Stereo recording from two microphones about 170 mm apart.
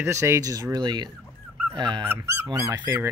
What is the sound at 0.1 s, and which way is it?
Speech, 15° right (ahead or behind).